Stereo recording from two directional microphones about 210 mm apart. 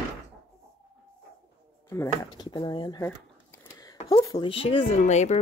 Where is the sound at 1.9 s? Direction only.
15° left (ahead or behind).